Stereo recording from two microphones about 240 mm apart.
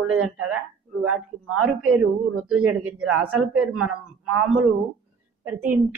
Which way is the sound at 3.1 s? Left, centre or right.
Right.